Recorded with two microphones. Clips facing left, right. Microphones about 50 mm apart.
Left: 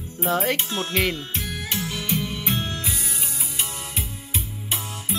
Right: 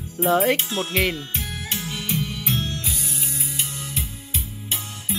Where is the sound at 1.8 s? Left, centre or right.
Centre.